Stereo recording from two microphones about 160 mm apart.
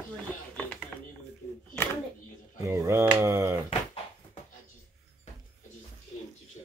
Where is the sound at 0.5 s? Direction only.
10° left (ahead or behind).